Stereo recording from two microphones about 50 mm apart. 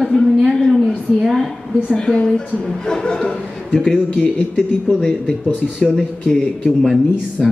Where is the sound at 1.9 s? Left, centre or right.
Centre.